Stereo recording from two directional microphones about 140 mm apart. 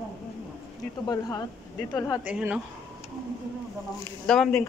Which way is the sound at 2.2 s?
10° right (ahead or behind).